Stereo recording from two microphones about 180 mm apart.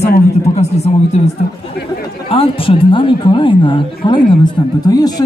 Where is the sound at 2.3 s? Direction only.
30° left (ahead or behind).